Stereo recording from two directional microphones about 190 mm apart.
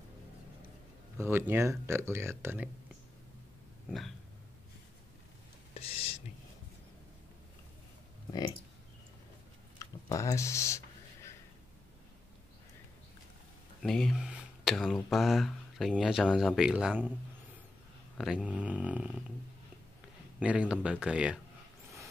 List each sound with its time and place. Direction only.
1.1 s speech: 15° right (ahead or behind)
5.8 s whispering: 30° left (ahead or behind)
8.3 s speech: 20° left (ahead or behind)
9.8 s a sound: 15° left (ahead or behind)
13.8 s speech: centre (ahead or behind)
18.1 s speech: centre (ahead or behind)
20.3 s speech: 5° right (ahead or behind)